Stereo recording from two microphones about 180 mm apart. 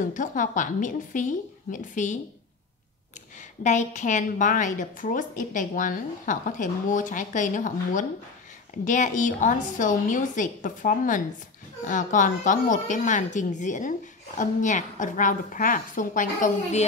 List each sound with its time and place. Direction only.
0.1 s a woman's voice: 45° left (ahead or behind)
3.6 s a woman's voice: 40° left (ahead or behind)